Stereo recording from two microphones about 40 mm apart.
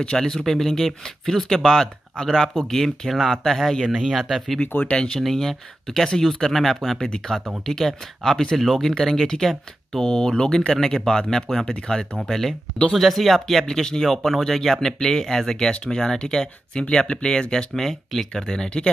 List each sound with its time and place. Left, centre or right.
0.2 s speech: centre
1.6 s speech: centre
2.7 s speech: centre
4.6 s speech: left
5.2 s speech: centre
8.6 s speech: centre
10.0 s speech: centre
17.7 s speech: centre